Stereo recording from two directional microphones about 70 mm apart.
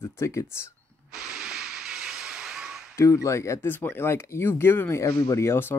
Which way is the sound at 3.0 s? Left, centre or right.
Left.